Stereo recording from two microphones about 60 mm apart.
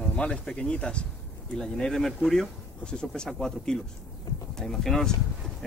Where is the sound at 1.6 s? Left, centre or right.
Centre.